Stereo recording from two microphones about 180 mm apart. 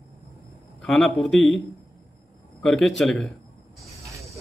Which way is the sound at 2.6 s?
5° left (ahead or behind).